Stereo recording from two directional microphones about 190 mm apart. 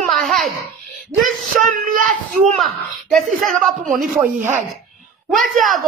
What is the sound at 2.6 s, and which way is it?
Speech, centre (ahead or behind).